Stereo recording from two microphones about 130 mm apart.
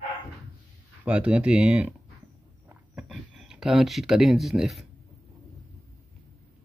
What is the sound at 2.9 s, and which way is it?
Speech, centre (ahead or behind).